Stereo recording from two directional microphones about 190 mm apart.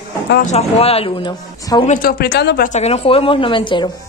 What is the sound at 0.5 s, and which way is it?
Speech, 35° left (ahead or behind).